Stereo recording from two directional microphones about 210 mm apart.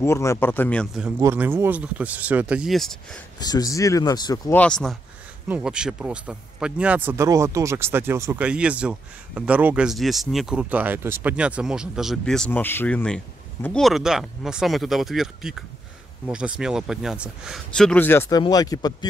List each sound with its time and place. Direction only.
0.0 s speech: 15° left (ahead or behind)
1.0 s speech: 10° right (ahead or behind)
3.3 s speech: 20° left (ahead or behind)
4.6 s speech: 5° left (ahead or behind)